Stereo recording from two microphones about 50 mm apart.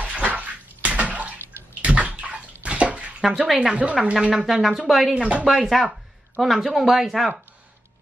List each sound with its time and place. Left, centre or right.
0.0 s bathtub: right
3.2 s speech: centre
3.5 s a woman's voice: right
4.1 s speech: centre